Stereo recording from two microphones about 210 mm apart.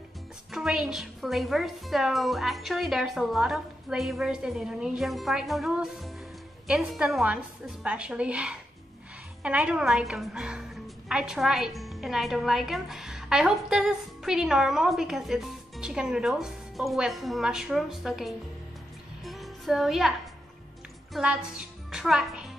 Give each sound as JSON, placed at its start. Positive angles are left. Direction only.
{"t": 0.5, "sound": "a woman's voice", "side_deg": 0}
{"t": 19.2, "sound": "music", "side_deg": 0}
{"t": 21.1, "sound": "a woman's voice", "side_deg": -5}